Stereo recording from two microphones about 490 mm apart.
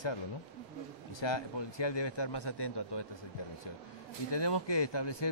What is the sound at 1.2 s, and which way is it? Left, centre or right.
A man's voice, left.